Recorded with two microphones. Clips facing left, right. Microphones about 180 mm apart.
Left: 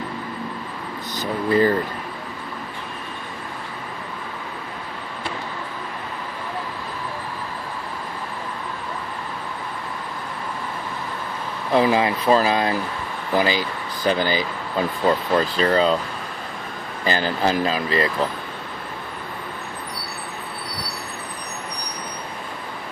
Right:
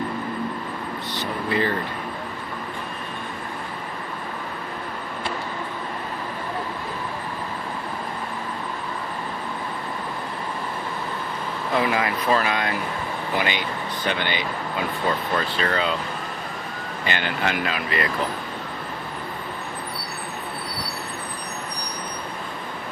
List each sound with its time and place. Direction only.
1.1 s speech: 40° left (ahead or behind)
11.7 s speech: 30° left (ahead or behind)
17.0 s speech: 35° left (ahead or behind)